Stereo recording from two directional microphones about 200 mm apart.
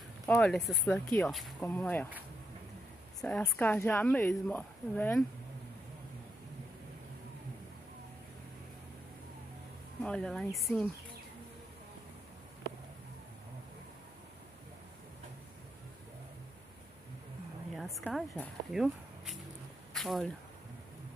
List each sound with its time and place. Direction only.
0.3 s a woman's voice: 5° left (ahead or behind)
3.3 s a woman's voice: 10° left (ahead or behind)
10.0 s speech: 5° left (ahead or behind)
17.7 s a sound: centre (ahead or behind)
18.7 s speech: centre (ahead or behind)
19.9 s a sound: centre (ahead or behind)